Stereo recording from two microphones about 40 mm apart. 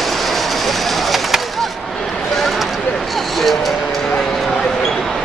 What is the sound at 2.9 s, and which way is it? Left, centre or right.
Speech, centre.